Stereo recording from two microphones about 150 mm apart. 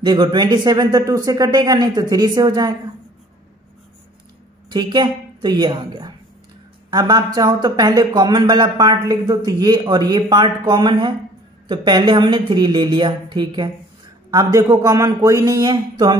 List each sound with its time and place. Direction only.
0.0 s speech: 30° right (ahead or behind)
4.6 s a woman's voice: 30° right (ahead or behind)